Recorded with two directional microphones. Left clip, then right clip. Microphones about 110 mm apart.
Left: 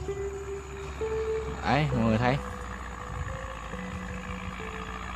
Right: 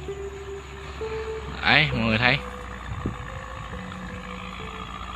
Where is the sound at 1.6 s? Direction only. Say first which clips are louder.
Right 9 dB; 20° left (ahead or behind).